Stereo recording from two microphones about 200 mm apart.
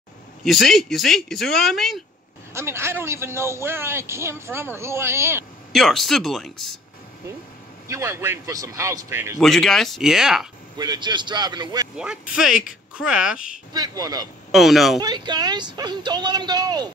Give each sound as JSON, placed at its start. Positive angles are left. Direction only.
{"t": 0.4, "sound": "speech", "side_deg": 0}
{"t": 2.5, "sound": "a man's voice", "side_deg": -10}
{"t": 5.7, "sound": "speech", "side_deg": 0}
{"t": 7.9, "sound": "a man's voice", "side_deg": -10}
{"t": 9.4, "sound": "speech", "side_deg": 0}
{"t": 10.8, "sound": "speech", "side_deg": -20}
{"t": 12.0, "sound": "speech", "side_deg": -5}
{"t": 13.7, "sound": "speech", "side_deg": -20}
{"t": 14.5, "sound": "speech", "side_deg": 0}
{"t": 15.0, "sound": "speech", "side_deg": -20}